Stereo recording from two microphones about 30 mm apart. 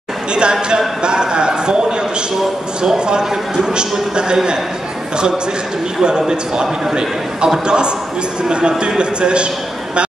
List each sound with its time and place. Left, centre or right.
0.3 s a man's voice: right
6.0 s a man's voice: right